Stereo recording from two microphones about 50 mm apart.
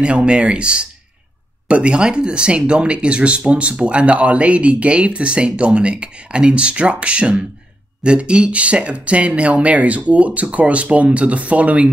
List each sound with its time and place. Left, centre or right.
0.0 s speech: right